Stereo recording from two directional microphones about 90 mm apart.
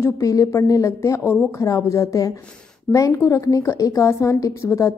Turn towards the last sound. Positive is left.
turn(degrees=35)  # may be behind; listen again after turning